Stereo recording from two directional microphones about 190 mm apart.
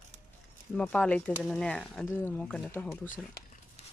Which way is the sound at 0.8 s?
5° left (ahead or behind).